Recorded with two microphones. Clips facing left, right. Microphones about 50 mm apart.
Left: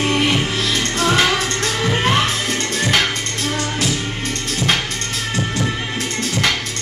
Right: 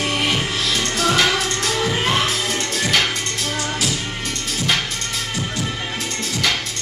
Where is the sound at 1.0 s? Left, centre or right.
Left.